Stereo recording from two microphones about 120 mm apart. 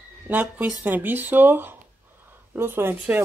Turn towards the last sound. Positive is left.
turn(degrees=-20)  # may be behind; listen again after turning